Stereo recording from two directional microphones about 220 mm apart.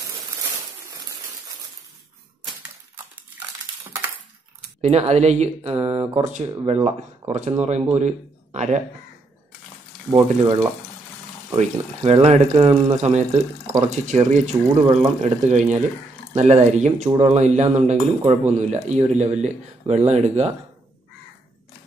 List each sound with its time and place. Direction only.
4.8 s speech: 30° right (ahead or behind)
10.1 s speech: 15° right (ahead or behind)
11.5 s speech: 25° right (ahead or behind)